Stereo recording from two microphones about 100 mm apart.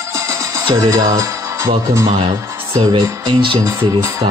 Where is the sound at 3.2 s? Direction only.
55° right (ahead or behind).